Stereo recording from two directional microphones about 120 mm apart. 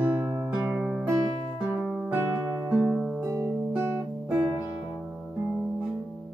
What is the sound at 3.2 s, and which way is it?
Music, 20° right (ahead or behind).